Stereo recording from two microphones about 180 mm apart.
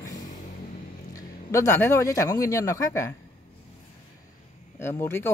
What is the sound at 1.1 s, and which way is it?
Speech, 15° left (ahead or behind).